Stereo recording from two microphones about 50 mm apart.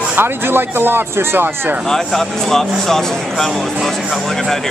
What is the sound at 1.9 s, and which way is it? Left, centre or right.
Speech, centre.